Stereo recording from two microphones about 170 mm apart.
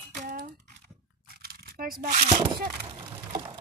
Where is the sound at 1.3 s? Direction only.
65° right (ahead or behind); by 2.4 s 50° right (ahead or behind).